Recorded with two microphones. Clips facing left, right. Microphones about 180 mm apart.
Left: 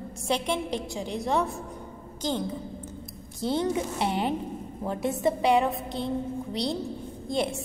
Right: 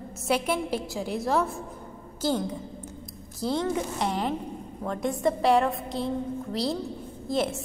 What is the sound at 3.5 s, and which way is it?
Speech, 25° left (ahead or behind).